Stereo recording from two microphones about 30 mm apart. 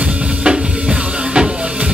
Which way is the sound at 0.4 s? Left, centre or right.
Right.